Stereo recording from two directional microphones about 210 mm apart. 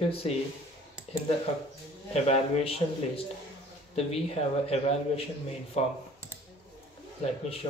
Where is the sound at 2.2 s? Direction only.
30° left (ahead or behind).